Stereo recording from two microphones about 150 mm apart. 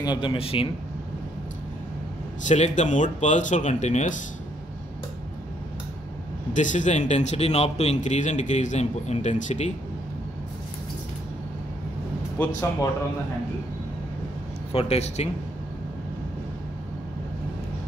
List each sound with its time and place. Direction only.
0.0 s a man's voice: 30° left (ahead or behind)
2.4 s a man's voice: 55° left (ahead or behind)
6.5 s a man's voice: 55° left (ahead or behind)
14.7 s a man's voice: 40° left (ahead or behind)